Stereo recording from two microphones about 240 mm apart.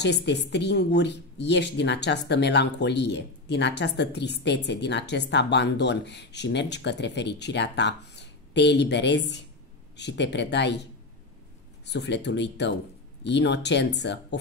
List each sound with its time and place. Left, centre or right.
0.0 s speech: left
11.8 s speech: left